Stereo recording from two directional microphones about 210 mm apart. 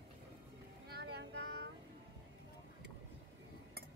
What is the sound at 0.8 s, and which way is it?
Music, 50° right (ahead or behind).